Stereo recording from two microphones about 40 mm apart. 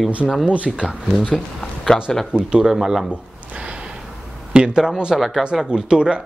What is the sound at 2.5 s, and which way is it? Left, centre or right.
Speech, centre.